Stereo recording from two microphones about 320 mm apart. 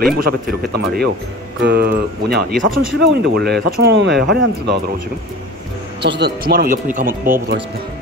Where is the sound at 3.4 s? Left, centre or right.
Right.